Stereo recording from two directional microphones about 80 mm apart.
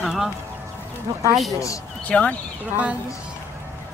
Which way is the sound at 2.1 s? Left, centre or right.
Centre.